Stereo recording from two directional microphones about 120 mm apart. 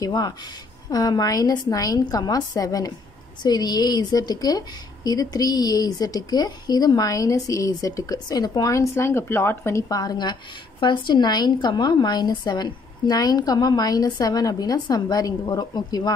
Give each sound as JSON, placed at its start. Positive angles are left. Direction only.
{"t": 0.0, "sound": "a woman's voice", "side_deg": 35}